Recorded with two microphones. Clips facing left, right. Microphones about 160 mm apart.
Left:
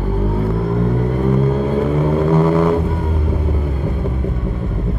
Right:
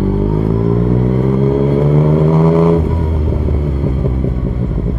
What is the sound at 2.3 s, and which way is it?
Vehicle, 15° right (ahead or behind).